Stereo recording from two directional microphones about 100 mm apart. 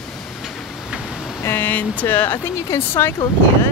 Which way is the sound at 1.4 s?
20° left (ahead or behind).